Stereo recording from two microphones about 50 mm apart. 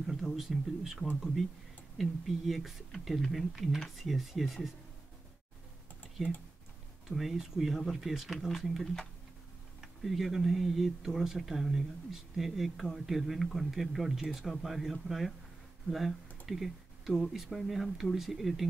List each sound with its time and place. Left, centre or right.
0.0 s speech: centre
2.0 s speech: centre
6.2 s speech: centre